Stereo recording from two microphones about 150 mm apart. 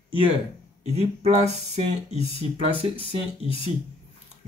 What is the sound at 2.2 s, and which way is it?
Speech, 40° left (ahead or behind).